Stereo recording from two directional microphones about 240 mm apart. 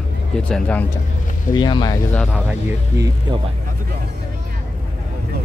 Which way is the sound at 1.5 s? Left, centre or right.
Centre.